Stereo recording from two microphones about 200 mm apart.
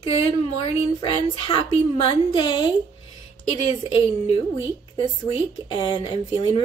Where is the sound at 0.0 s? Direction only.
30° left (ahead or behind).